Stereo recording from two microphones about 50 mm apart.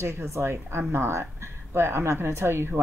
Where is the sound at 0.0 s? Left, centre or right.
Right.